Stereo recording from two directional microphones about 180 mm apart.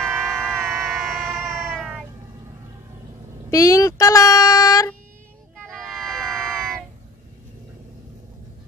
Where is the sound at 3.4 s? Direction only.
15° left (ahead or behind).